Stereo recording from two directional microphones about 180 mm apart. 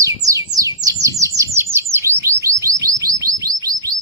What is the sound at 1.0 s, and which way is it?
Bird, 15° right (ahead or behind).